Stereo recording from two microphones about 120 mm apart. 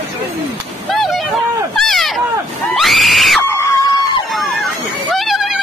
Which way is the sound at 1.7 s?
Centre (ahead or behind).